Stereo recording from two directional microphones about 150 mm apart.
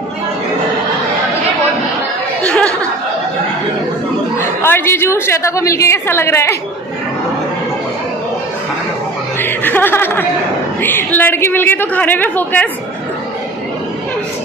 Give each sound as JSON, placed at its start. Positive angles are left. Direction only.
{"t": 2.4, "sound": "a sound", "side_deg": 5}
{"t": 4.4, "sound": "a woman's voice", "side_deg": 15}
{"t": 9.4, "sound": "chuckle", "side_deg": 15}
{"t": 10.8, "sound": "a woman's voice", "side_deg": 15}